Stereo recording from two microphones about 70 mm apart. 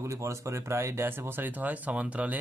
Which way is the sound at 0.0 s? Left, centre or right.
Right.